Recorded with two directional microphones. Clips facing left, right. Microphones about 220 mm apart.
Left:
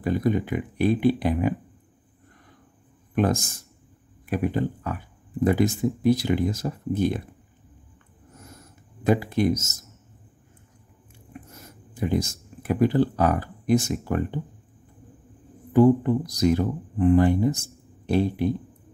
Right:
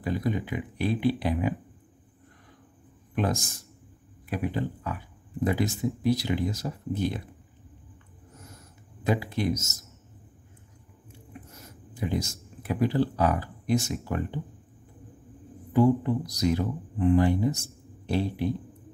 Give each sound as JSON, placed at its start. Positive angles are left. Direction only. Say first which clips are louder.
{"t": 0.0, "sound": "speech", "louder": "left 5 dB", "side_deg": 50}
{"t": 4.3, "sound": "speech", "louder": "left 5 dB", "side_deg": 50}
{"t": 9.0, "sound": "speech", "louder": "left 6 dB", "side_deg": 50}
{"t": 11.9, "sound": "speech", "louder": "left 5 dB", "side_deg": 50}
{"t": 15.7, "sound": "speech", "louder": "left 5 dB", "side_deg": 50}